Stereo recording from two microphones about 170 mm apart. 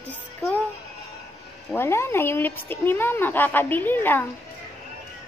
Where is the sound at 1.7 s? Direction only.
15° left (ahead or behind).